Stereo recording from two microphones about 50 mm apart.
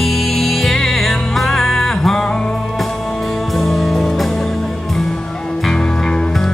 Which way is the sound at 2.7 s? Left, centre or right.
Centre.